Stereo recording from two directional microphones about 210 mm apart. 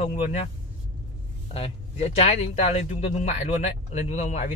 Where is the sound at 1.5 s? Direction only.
30° left (ahead or behind).